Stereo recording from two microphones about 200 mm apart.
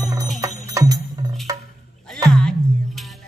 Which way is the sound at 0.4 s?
20° right (ahead or behind).